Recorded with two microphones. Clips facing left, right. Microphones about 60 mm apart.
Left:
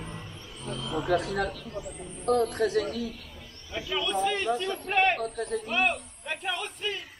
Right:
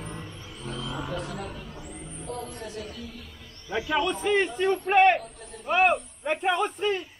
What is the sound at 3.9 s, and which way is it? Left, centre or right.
A man's voice, right.